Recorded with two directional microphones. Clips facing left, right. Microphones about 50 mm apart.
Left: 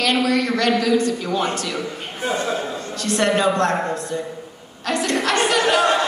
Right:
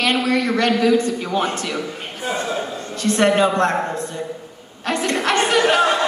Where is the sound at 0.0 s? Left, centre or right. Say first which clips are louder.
Even; right.